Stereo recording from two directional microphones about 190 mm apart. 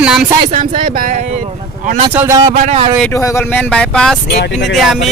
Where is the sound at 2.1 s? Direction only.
15° right (ahead or behind).